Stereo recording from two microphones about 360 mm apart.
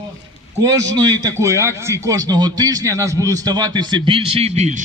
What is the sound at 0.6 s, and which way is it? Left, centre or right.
A man's voice, centre.